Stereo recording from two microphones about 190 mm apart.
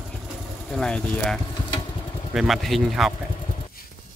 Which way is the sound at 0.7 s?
5° left (ahead or behind).